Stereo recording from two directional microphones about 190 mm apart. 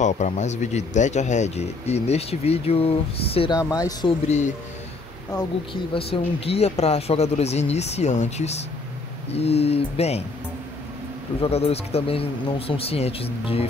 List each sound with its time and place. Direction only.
0.0 s speech: 40° left (ahead or behind); by 4.1 s 20° left (ahead or behind)
5.7 s speech: 30° left (ahead or behind)
11.4 s speech: 30° left (ahead or behind)